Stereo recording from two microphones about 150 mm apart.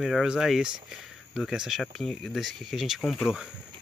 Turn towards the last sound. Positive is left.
turn(degrees=0)  # may be behind; listen again after turning